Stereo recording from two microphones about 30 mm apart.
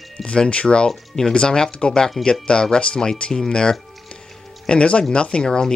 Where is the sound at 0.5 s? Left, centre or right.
Left.